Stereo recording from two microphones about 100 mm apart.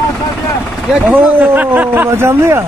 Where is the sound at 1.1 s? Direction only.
20° right (ahead or behind).